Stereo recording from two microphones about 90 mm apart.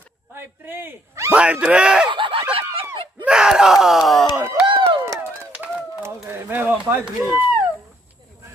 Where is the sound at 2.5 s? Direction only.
85° right.